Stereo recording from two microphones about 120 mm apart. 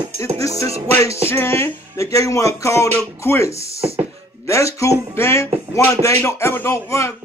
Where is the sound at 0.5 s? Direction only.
60° right (ahead or behind).